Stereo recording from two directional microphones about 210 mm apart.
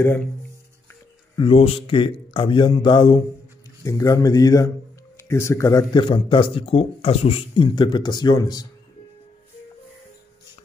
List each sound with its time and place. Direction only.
1.3 s speech: 25° left (ahead or behind)